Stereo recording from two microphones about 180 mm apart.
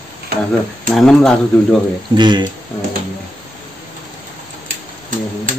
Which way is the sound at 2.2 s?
25° right (ahead or behind).